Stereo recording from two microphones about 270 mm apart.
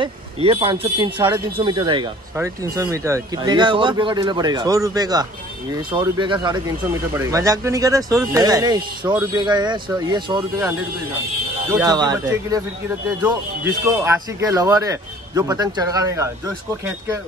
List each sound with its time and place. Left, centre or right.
0.0 s a man's voice: centre
14.0 s a man's voice: centre